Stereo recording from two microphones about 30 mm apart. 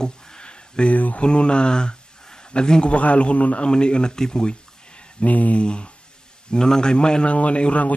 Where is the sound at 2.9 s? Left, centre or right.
Left.